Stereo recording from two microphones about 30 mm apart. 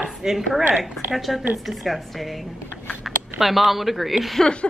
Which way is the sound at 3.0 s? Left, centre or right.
Centre.